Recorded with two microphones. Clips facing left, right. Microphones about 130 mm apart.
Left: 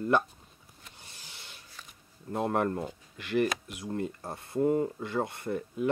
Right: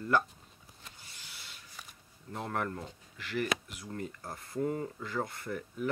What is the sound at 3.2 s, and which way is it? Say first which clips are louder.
Speech: left 6 dB; 20° left (ahead or behind).